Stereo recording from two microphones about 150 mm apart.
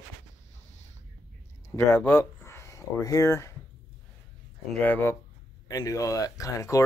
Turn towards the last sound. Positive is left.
turn(degrees=20)  # may be behind; listen again after turning